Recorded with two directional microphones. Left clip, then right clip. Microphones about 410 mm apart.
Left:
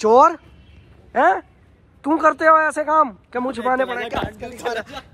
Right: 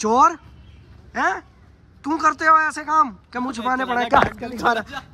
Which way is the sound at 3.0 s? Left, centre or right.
Centre.